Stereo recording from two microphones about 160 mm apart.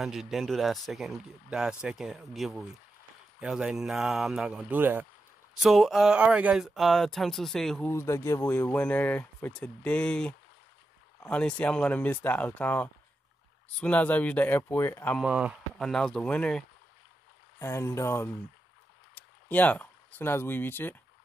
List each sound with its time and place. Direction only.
0.0 s speech: centre (ahead or behind)
5.6 s speech: centre (ahead or behind)
7.9 s speech: 15° left (ahead or behind)
15.1 s speech: 5° right (ahead or behind); by 21.0 s 10° left (ahead or behind)